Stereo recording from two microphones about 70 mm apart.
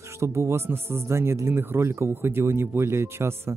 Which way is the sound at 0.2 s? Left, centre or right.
Right.